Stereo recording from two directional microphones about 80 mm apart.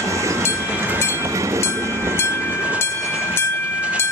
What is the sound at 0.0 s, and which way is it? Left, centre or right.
Train, right.